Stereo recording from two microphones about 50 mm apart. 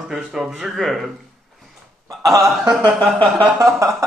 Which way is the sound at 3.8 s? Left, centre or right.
Right.